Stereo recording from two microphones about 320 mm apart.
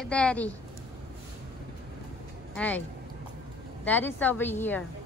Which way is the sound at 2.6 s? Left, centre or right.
Centre.